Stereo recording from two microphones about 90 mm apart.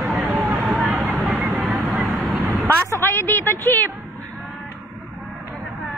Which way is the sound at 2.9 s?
25° left (ahead or behind).